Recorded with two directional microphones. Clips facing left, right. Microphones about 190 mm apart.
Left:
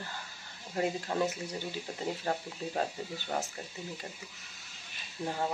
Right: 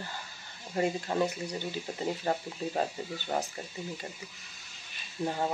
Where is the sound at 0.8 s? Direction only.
Centre (ahead or behind).